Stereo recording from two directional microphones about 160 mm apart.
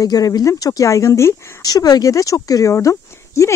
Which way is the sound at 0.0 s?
20° left (ahead or behind).